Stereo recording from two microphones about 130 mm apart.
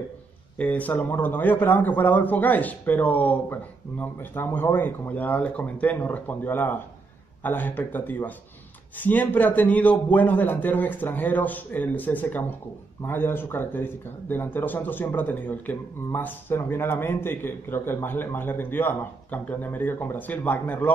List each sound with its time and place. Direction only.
0.6 s speech: 10° left (ahead or behind)